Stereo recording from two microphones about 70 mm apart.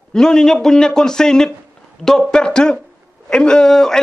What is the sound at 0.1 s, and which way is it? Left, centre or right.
A man's voice, centre.